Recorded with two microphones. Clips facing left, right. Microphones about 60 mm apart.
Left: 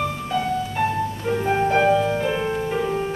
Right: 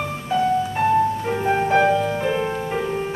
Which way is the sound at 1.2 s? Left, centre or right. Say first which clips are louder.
Even; centre.